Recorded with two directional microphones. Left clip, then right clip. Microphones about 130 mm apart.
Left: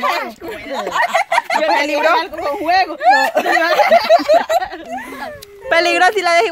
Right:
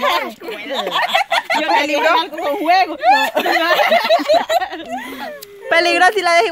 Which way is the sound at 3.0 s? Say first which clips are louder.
Left 1 dB; 45° left (ahead or behind).